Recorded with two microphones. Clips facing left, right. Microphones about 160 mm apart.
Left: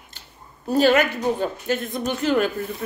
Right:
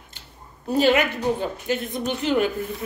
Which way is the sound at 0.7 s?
15° right (ahead or behind).